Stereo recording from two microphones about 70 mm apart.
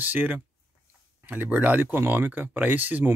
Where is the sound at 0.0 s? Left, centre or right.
Right.